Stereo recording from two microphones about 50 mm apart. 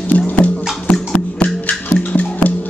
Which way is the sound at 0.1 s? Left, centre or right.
Left.